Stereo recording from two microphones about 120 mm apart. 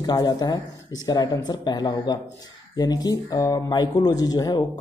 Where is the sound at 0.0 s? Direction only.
35° left (ahead or behind).